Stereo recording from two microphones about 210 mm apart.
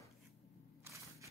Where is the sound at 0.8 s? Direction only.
15° right (ahead or behind).